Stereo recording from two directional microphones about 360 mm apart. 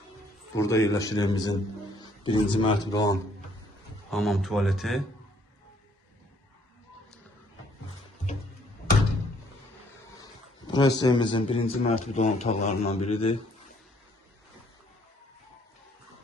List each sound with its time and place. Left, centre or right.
0.6 s a man's voice: centre
10.7 s a man's voice: centre